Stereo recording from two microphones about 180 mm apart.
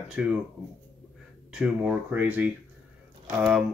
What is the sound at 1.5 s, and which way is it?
Speech, 5° right (ahead or behind).